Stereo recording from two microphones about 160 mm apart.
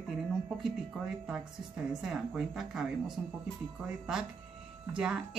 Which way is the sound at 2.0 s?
5° right (ahead or behind).